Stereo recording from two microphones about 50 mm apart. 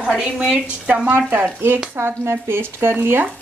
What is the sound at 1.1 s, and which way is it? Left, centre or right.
Speech, right.